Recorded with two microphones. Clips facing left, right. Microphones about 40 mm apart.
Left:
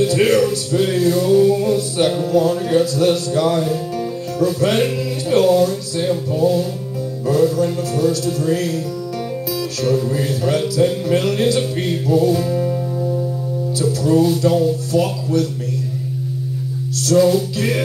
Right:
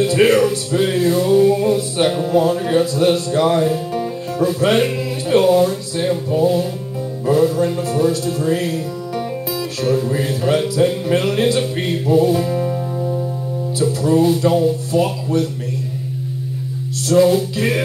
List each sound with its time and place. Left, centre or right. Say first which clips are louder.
0.0 s music: right 1 dB; right
17.0 s music: right 1 dB; centre